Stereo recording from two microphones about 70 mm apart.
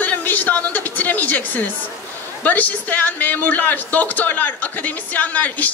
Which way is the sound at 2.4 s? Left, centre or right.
Left.